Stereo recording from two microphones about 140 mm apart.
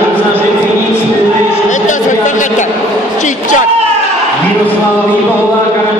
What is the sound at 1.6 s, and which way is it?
A woman's voice, 60° left (ahead or behind).